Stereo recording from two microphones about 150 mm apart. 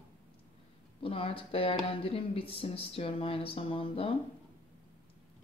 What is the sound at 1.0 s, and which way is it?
Speech, 35° left (ahead or behind).